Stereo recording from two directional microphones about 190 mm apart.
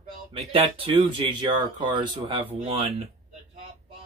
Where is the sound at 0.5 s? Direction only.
30° right (ahead or behind).